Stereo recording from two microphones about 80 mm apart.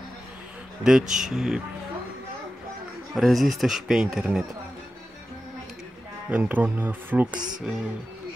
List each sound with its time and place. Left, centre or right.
0.8 s speech: centre
3.2 s speech: centre
6.2 s speech: centre
7.3 s speech: right